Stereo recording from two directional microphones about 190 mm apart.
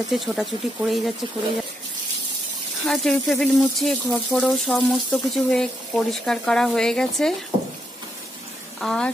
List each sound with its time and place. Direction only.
0.1 s speech: centre (ahead or behind)
2.9 s speech: centre (ahead or behind)
8.7 s speech: 5° left (ahead or behind)